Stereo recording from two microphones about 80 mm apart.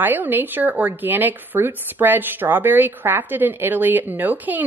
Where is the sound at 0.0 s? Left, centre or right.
Right.